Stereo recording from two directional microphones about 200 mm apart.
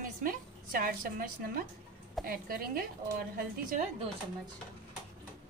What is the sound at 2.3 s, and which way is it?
Speech, 45° right (ahead or behind).